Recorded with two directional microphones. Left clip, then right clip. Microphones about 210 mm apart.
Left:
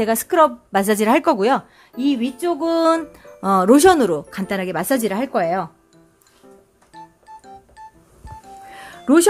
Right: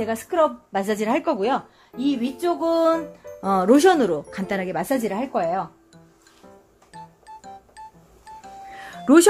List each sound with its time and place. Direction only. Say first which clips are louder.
0.0 s a woman's voice: left 5 dB; 35° left (ahead or behind)
3.3 s a woman's voice: left 4 dB; 25° left (ahead or behind); by 5.7 s 40° left (ahead or behind)
8.6 s music: even; 10° left (ahead or behind)